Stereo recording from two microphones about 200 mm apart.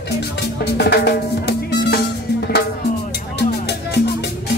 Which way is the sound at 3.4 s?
55° left (ahead or behind).